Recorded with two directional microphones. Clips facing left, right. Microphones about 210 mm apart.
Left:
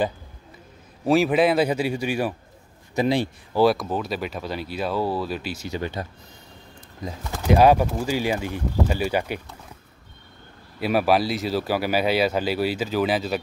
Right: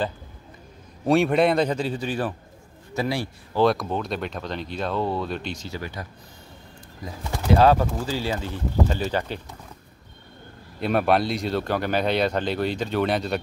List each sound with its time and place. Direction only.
1.0 s a man's voice: centre (ahead or behind); by 3.3 s 20° left (ahead or behind)
3.5 s speech: 5° left (ahead or behind)
5.7 s speech: 25° left (ahead or behind)
7.5 s speech: 15° left (ahead or behind)
10.8 s speech: 5° left (ahead or behind)